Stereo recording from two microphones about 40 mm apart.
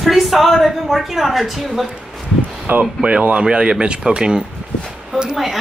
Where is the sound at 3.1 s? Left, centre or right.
Right.